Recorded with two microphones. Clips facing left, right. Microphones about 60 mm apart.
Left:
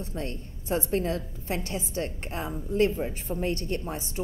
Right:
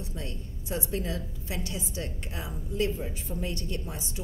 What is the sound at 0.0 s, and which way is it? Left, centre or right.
A woman's voice, left.